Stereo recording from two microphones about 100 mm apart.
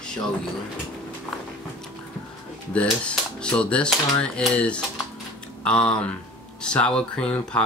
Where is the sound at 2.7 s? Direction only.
10° left (ahead or behind).